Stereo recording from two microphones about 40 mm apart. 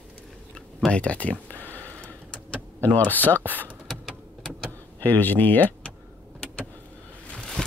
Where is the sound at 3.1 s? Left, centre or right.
Left.